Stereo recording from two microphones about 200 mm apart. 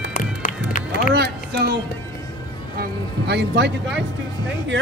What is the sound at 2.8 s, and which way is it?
Music, 55° right (ahead or behind).